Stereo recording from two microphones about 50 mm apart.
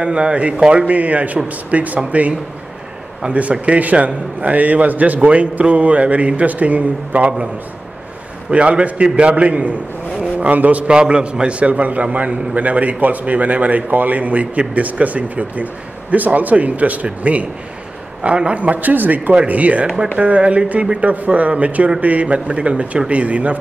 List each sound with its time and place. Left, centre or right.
0.0 s a man's voice: centre
3.6 s a man's voice: right
8.5 s a man's voice: right